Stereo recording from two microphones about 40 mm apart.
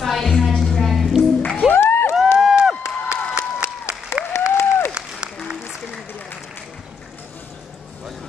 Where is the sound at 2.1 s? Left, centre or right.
Centre.